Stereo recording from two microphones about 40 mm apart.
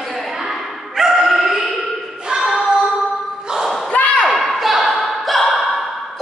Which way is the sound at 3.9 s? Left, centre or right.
Left.